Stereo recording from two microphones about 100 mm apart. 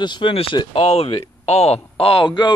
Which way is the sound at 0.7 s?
85° left.